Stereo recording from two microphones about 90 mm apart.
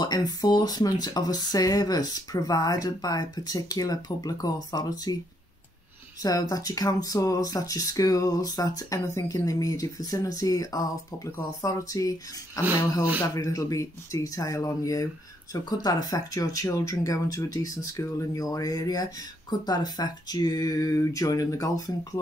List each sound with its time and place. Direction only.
0.0 s speech: 45° left (ahead or behind)
6.2 s speech: 45° left (ahead or behind)